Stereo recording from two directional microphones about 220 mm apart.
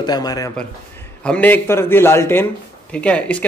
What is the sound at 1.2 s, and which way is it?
A man's voice, 5° left (ahead or behind).